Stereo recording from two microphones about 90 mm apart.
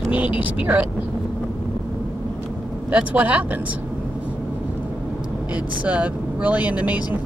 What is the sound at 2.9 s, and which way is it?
Speech, 15° right (ahead or behind).